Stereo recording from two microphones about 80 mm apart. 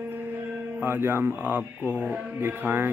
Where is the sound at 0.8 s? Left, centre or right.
Right.